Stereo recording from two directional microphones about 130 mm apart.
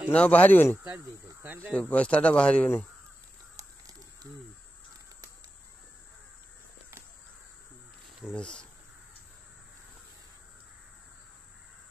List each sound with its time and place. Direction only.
0.1 s speech: 10° left (ahead or behind)
0.9 s speech: 15° right (ahead or behind)
1.8 s speech: 10° left (ahead or behind)
3.5 s crow: 25° right (ahead or behind)
8.4 s speech: 5° left (ahead or behind)